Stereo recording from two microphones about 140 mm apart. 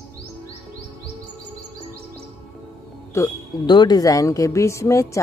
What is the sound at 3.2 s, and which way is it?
Speech, 30° left (ahead or behind).